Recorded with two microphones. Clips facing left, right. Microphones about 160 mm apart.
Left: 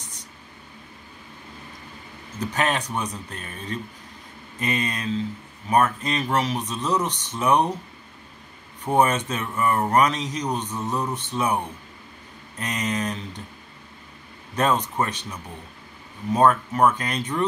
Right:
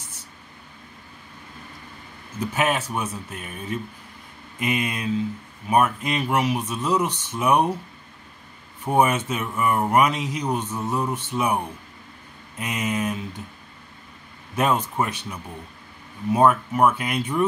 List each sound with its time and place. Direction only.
2.4 s speech: 10° right (ahead or behind)
8.8 s speech: 10° right (ahead or behind)
14.5 s speech: 10° right (ahead or behind)